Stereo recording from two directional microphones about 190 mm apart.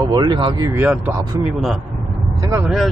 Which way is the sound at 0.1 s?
25° right (ahead or behind).